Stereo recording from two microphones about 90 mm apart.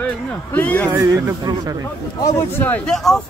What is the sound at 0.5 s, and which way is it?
Speech, 15° left (ahead or behind).